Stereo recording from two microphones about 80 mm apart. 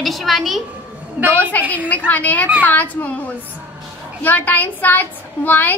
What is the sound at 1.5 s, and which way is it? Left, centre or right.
A woman's voice, left.